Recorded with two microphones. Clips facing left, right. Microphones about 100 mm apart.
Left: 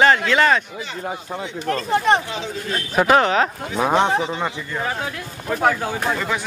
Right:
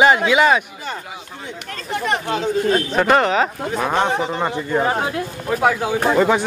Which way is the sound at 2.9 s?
Centre (ahead or behind).